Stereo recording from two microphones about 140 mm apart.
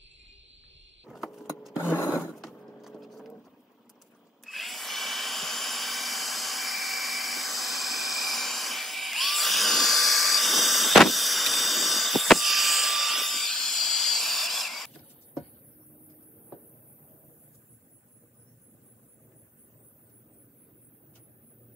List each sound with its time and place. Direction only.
1.0 s vehicle: centre (ahead or behind)
1.9 s wood: 20° left (ahead or behind)
2.1 s a sound: centre (ahead or behind)
2.8 s sewing machine: centre (ahead or behind)
4.5 s drill: centre (ahead or behind)